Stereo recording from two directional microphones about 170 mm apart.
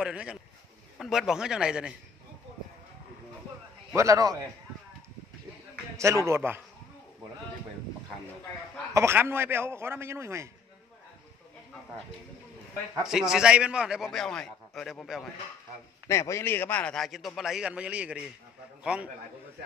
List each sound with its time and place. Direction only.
0.0 s a man's voice: 5° right (ahead or behind)
3.9 s a man's voice: 20° right (ahead or behind)
5.9 s a man's voice: 15° right (ahead or behind)
8.9 s a man's voice: 15° right (ahead or behind)
13.0 s a man's voice: 5° right (ahead or behind)
16.1 s a man's voice: 15° left (ahead or behind); by 19.1 s 5° right (ahead or behind)